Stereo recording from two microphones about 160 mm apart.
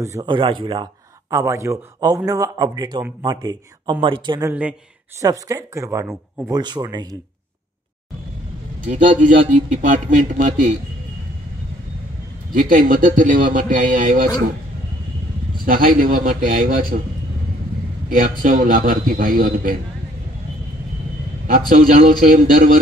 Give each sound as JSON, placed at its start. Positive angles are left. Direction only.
{"t": 0.0, "sound": "speech", "side_deg": -20}
{"t": 1.3, "sound": "a man's voice", "side_deg": -20}
{"t": 4.4, "sound": "speech", "side_deg": -10}
{"t": 5.2, "sound": "a man's voice", "side_deg": -20}
{"t": 8.8, "sound": "a man's voice", "side_deg": -55}
{"t": 12.5, "sound": "a man's voice", "side_deg": -60}
{"t": 15.6, "sound": "a man's voice", "side_deg": -60}
{"t": 18.1, "sound": "a man's voice", "side_deg": -55}
{"t": 21.5, "sound": "a man's voice", "side_deg": -60}